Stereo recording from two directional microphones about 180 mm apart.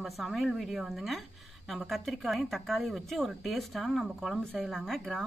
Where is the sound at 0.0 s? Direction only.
Centre (ahead or behind).